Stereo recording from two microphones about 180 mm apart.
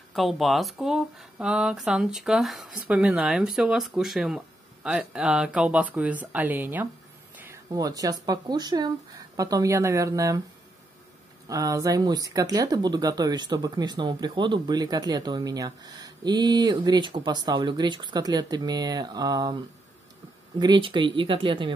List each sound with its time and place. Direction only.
0.1 s speech: centre (ahead or behind); by 10.4 s 20° right (ahead or behind)
11.4 s speech: 20° right (ahead or behind)